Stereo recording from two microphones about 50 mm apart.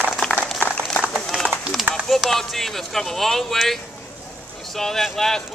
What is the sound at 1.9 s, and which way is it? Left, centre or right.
Speech, centre.